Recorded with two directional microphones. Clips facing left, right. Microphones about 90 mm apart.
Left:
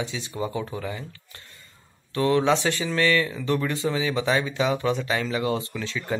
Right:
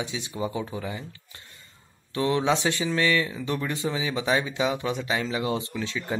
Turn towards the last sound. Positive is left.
turn(degrees=-20)  # may be behind; listen again after turning